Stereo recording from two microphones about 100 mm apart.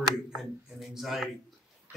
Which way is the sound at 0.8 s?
Centre (ahead or behind).